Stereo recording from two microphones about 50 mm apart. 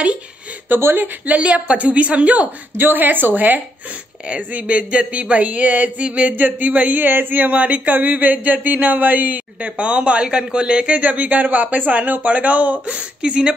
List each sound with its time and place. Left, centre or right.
0.9 s speech: right
1.3 s a sound: right
2.8 s speech: right
4.3 s a sound: right
6.3 s speech: right; by 11.0 s centre
11.0 s speech: right